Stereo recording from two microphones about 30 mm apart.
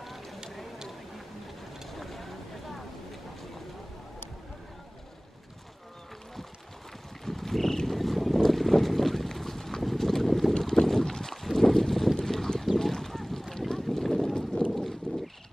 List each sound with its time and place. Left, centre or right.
0.0 s a sound: centre
2.0 s a sound: centre
7.2 s boat: centre
10.7 s boat: centre
14.3 s boat: left
15.1 s vehicle: centre